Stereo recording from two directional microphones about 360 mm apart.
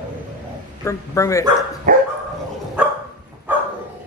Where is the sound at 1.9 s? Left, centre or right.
Right.